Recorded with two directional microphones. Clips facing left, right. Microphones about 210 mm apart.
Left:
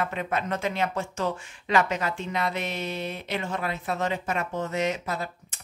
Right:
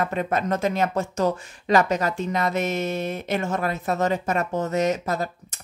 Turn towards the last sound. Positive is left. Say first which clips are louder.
# right 5 dB
turn(degrees=-40)  # may be behind; listen again after turning